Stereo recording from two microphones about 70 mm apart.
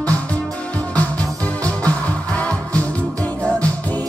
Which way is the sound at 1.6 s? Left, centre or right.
Centre.